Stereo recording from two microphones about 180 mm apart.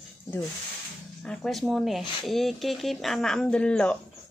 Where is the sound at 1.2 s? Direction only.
Centre (ahead or behind).